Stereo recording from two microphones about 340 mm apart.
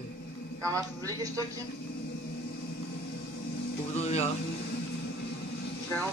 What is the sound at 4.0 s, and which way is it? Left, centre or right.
Music, centre.